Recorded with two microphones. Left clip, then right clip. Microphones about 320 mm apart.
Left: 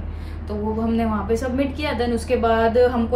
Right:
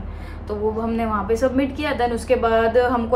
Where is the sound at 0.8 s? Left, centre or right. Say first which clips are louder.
Right 1 dB; centre.